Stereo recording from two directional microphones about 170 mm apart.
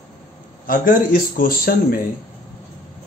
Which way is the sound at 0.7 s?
55° left (ahead or behind).